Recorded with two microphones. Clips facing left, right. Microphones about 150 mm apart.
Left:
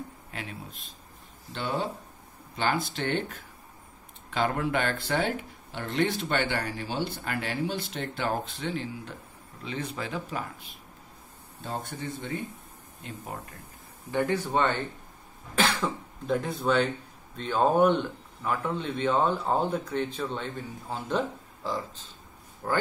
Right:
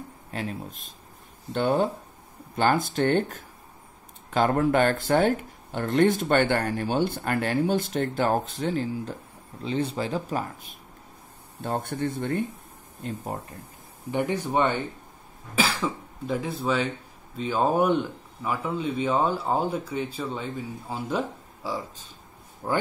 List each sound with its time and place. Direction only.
0.3 s speech: 40° right (ahead or behind)
9.6 s speech: 30° right (ahead or behind)
11.6 s speech: 55° right (ahead or behind)
13.0 s speech: 40° right (ahead or behind)
14.1 s speech: 15° right (ahead or behind)